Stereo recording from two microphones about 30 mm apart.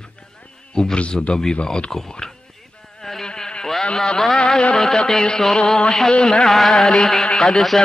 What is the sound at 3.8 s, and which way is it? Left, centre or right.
Speech, left.